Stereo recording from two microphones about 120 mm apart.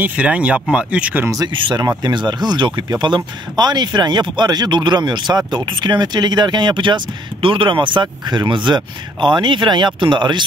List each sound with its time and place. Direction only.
0.0 s speech: 10° right (ahead or behind)
1.3 s speech: 40° right (ahead or behind)